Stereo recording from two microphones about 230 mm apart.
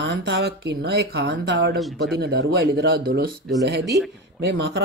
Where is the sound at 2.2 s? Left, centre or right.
Right.